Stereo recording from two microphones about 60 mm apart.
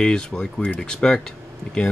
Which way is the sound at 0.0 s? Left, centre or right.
Centre.